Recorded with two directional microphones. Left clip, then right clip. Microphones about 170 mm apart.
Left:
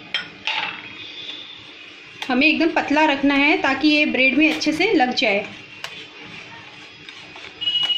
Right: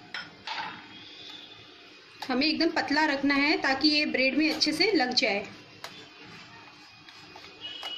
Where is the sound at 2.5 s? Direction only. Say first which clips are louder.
Left 8 dB; 20° left (ahead or behind).